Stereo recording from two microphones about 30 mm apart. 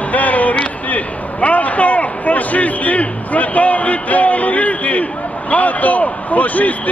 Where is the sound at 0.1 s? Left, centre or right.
Left.